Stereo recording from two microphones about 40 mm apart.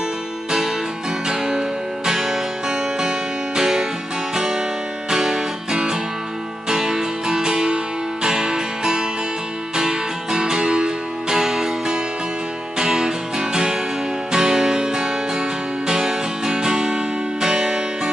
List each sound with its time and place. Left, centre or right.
1.2 s music: centre